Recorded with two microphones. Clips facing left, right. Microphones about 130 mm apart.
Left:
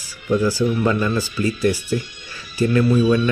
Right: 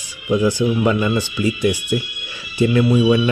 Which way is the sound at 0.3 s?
15° right (ahead or behind).